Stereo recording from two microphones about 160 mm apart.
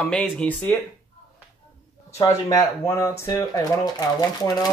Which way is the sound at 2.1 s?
20° left (ahead or behind).